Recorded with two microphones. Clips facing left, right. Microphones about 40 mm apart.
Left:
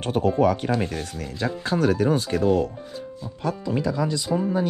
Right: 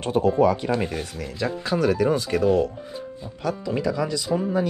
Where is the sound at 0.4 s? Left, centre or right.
Left.